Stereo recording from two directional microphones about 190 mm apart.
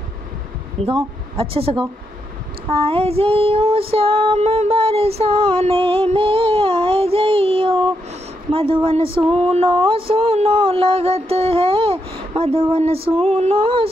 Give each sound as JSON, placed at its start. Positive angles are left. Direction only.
{"t": 0.8, "sound": "speech", "side_deg": -30}
{"t": 2.7, "sound": "child singing", "side_deg": -30}
{"t": 8.5, "sound": "a sound", "side_deg": -30}